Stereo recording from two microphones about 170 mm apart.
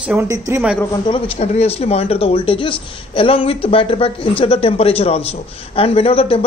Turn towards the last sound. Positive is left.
turn(degrees=35)  # may be behind; listen again after turning